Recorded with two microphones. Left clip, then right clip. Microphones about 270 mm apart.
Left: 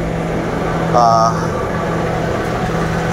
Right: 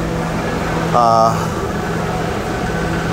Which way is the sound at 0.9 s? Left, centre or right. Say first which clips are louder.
Even; right.